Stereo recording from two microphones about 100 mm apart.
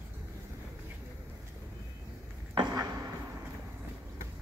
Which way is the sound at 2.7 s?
35° right (ahead or behind).